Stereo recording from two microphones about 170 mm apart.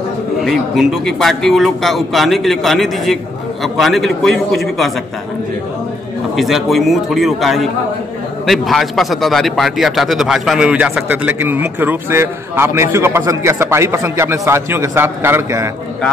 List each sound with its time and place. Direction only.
0.4 s a man's voice: centre (ahead or behind)
6.3 s a man's voice: centre (ahead or behind)